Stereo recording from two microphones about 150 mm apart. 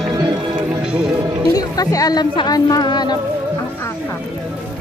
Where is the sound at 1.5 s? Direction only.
25° left (ahead or behind).